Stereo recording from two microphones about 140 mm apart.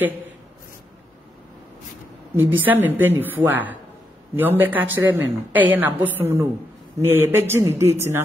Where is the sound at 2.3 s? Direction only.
15° right (ahead or behind).